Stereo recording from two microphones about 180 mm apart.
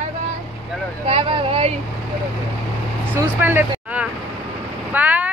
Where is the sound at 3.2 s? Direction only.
10° right (ahead or behind).